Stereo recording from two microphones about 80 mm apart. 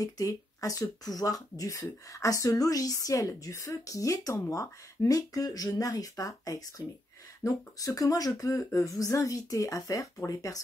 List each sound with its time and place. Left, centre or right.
0.0 s speech: left